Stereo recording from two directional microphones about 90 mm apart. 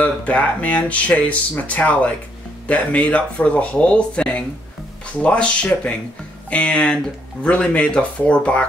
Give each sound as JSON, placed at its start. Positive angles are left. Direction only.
{"t": 0.0, "sound": "speech", "side_deg": 15}